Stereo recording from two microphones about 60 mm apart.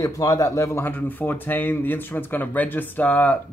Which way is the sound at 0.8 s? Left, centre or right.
Left.